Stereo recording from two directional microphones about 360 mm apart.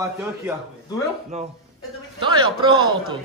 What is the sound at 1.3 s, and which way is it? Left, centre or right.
A man's voice, centre.